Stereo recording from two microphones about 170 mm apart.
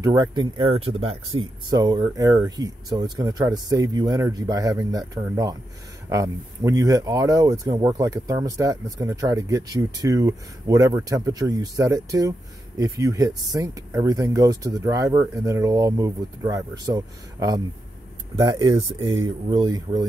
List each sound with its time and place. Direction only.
0.0 s speech: 20° right (ahead or behind)